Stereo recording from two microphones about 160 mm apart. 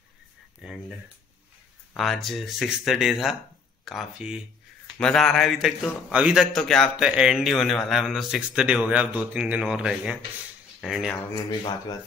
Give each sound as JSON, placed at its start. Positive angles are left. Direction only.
{"t": 0.6, "sound": "speech", "side_deg": -5}
{"t": 11.3, "sound": "speech", "side_deg": 30}